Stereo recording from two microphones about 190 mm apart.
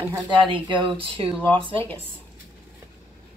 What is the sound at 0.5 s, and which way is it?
Speech, 25° right (ahead or behind).